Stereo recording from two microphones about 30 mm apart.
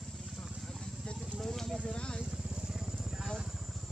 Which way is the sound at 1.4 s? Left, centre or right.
Centre.